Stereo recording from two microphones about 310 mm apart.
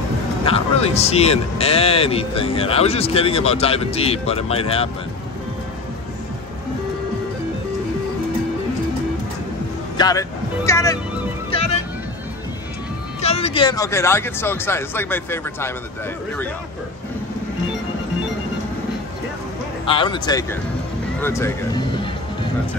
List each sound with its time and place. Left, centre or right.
0.5 s a man's voice: centre
9.9 s speech: centre
11.5 s music: centre
13.2 s speech: centre
19.9 s speech: centre